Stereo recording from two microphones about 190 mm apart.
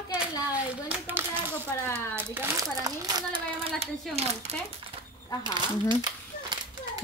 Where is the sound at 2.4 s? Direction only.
20° right (ahead or behind).